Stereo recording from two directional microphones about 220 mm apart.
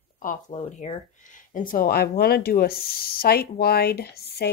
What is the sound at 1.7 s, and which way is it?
Speech, 40° left (ahead or behind).